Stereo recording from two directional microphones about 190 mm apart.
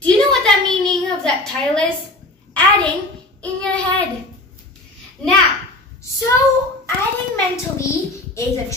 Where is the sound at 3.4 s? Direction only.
5° left (ahead or behind).